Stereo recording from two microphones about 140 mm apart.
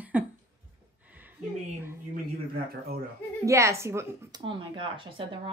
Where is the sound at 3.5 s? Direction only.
20° right (ahead or behind).